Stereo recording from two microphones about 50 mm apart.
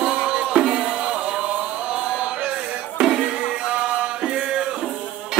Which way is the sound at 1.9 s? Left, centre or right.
Right.